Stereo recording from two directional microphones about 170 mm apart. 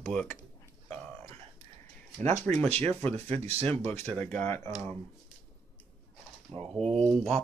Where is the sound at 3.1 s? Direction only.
35° right (ahead or behind).